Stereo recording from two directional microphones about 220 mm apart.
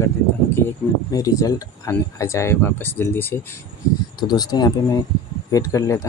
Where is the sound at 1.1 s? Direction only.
15° left (ahead or behind).